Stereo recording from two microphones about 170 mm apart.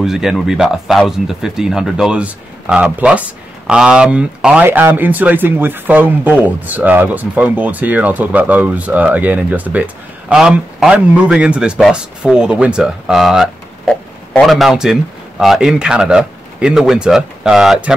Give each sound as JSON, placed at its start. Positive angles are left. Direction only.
{"t": 0.0, "sound": "a man's voice", "side_deg": -5}